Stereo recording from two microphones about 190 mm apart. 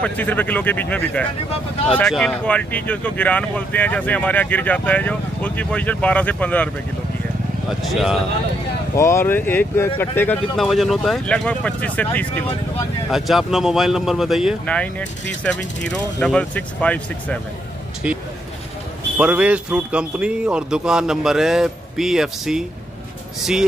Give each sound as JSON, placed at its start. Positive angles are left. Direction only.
{"t": 0.0, "sound": "speech", "side_deg": 10}
{"t": 1.5, "sound": "speech", "side_deg": 30}
{"t": 2.0, "sound": "speech", "side_deg": 5}
{"t": 7.9, "sound": "speech", "side_deg": 0}
{"t": 8.9, "sound": "speech", "side_deg": 15}
{"t": 18.0, "sound": "speech", "side_deg": -5}